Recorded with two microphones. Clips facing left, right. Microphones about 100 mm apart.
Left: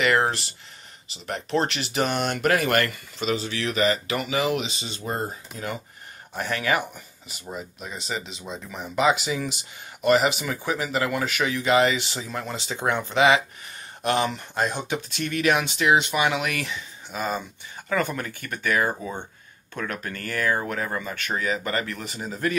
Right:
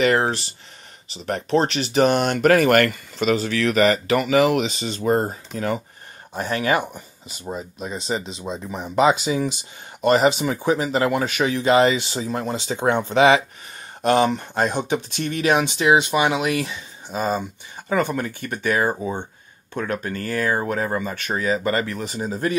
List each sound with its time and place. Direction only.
1.2 s speech: 50° right (ahead or behind)
6.3 s speech: 30° right (ahead or behind)